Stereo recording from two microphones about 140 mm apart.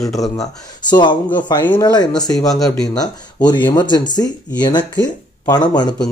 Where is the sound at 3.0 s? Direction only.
30° left (ahead or behind).